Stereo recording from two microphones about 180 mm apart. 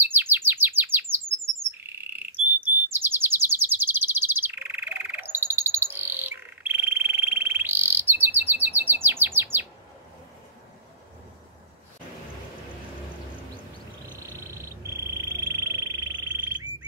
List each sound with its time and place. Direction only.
0.0 s chirp: 10° right (ahead or behind)
1.8 s bird: 10° right (ahead or behind)
14.2 s frog: 15° right (ahead or behind)